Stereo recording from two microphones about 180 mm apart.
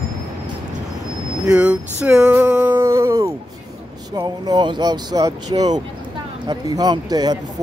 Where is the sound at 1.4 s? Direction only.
5° right (ahead or behind).